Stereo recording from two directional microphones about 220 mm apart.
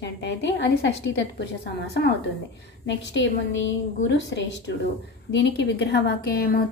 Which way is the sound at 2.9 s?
55° left (ahead or behind).